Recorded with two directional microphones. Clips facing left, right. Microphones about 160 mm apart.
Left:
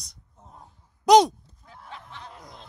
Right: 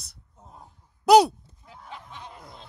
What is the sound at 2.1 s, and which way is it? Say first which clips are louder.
Snicker: even; 15° right (ahead or behind).